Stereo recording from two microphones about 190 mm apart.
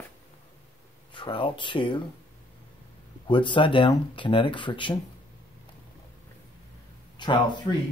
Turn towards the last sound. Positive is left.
turn(degrees=25)  # may be behind; listen again after turning